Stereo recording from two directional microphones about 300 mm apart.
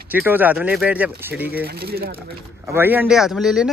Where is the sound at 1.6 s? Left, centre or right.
Right.